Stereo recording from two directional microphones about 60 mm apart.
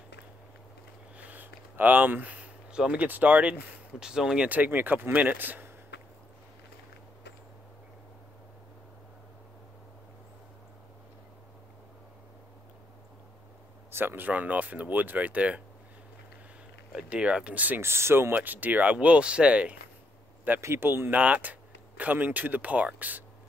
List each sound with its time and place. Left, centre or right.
1.1 s a sound: right
2.8 s speech: right
4.0 s speech: centre
4.5 s speech: right
13.9 s speech: right
16.9 s speech: centre
17.7 s speech: right
18.3 s speech: right
20.6 s speech: right
21.2 s speech: right